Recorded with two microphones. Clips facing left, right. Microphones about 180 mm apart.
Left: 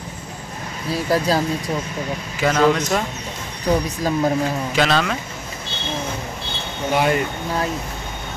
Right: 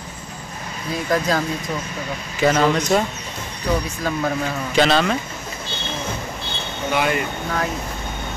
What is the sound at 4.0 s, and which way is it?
Speech, 35° left (ahead or behind).